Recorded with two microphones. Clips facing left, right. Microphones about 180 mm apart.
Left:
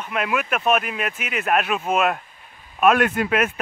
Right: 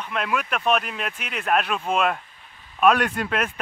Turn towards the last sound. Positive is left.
turn(degrees=5)  # may be behind; listen again after turning